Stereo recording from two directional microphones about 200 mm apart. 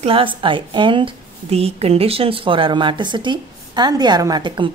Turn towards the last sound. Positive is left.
turn(degrees=-20)  # may be behind; listen again after turning